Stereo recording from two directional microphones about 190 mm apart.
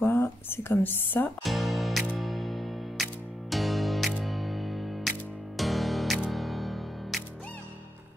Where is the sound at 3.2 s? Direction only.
Centre (ahead or behind).